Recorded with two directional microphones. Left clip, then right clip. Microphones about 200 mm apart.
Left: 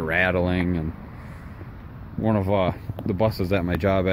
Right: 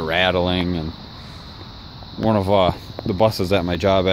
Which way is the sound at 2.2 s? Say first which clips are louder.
Right 6 dB; 20° right (ahead or behind).